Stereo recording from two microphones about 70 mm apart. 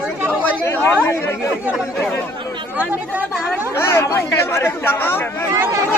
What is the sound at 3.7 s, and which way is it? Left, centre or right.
Speech, left.